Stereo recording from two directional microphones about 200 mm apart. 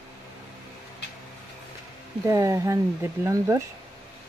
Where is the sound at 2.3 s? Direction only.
15° right (ahead or behind).